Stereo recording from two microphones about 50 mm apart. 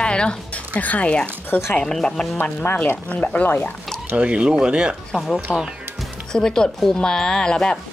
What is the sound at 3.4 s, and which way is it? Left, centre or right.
Speech, left.